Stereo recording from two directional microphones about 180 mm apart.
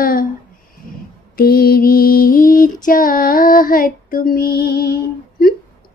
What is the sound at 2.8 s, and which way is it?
Female singing, 50° left (ahead or behind).